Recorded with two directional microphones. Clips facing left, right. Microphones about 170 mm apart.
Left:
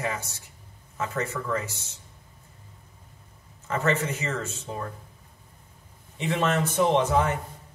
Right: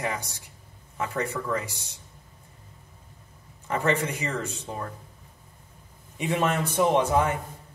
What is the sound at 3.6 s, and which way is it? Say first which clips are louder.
A man's voice: even; 15° right (ahead or behind).